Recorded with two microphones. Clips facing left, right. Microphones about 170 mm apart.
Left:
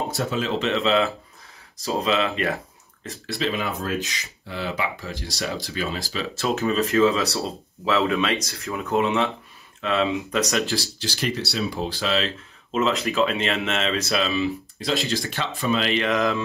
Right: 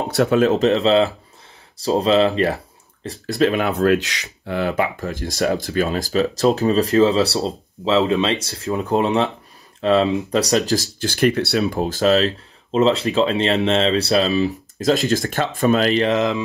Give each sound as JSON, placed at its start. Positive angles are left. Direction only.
{"t": 0.1, "sound": "speech", "side_deg": -65}
{"t": 3.3, "sound": "speech", "side_deg": -55}